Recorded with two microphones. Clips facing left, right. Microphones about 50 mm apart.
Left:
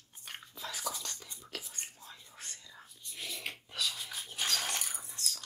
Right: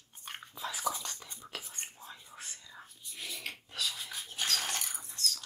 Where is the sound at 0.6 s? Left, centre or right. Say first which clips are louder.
Right 5 dB; centre.